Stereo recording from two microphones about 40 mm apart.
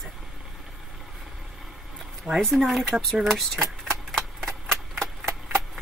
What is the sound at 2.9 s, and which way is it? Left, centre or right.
Speech, right.